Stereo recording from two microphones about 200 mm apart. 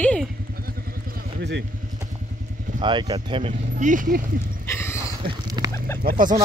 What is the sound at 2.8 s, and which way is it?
Speech, 25° right (ahead or behind).